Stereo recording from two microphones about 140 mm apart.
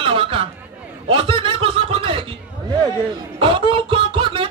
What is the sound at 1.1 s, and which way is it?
Snicker, 40° right (ahead or behind).